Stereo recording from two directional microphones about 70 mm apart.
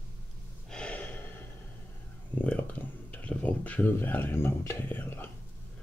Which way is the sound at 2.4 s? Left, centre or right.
Left.